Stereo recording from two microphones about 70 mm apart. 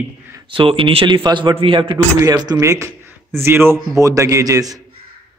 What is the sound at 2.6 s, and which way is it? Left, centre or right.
A man's voice, right.